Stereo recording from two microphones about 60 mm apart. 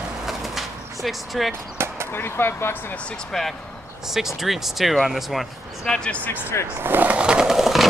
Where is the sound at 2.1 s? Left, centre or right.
Left.